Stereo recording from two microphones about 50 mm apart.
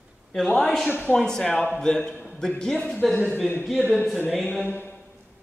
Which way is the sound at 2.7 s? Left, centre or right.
Centre.